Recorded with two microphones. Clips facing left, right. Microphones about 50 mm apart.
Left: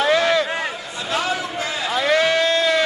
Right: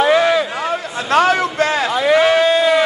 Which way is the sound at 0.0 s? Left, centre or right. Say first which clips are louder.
Right 4 dB; centre.